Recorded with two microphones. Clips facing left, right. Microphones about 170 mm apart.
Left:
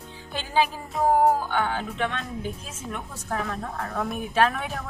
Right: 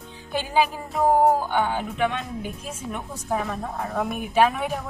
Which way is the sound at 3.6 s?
20° right (ahead or behind).